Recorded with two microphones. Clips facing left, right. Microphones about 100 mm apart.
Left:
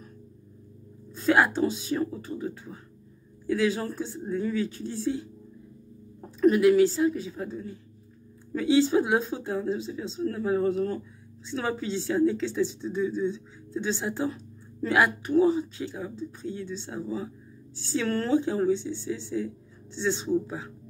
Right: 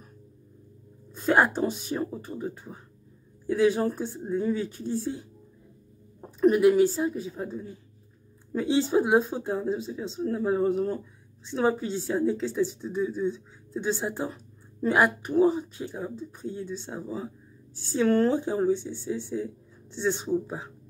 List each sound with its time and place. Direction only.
1.1 s a woman's voice: 15° right (ahead or behind)
6.4 s a woman's voice: 15° right (ahead or behind)
8.7 s a woman's voice: 15° right (ahead or behind)